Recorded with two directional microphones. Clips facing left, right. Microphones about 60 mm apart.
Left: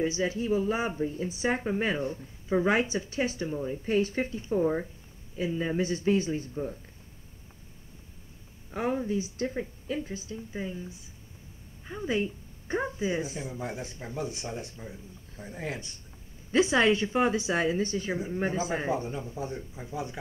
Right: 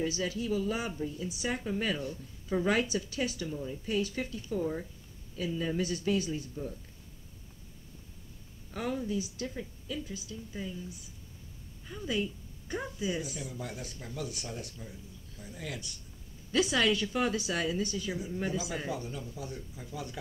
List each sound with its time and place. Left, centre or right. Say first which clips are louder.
0.0 s speech: left 4 dB; left
8.7 s speech: left 4 dB; left